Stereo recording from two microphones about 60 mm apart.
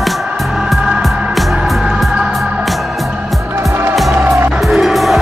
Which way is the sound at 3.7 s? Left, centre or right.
Right.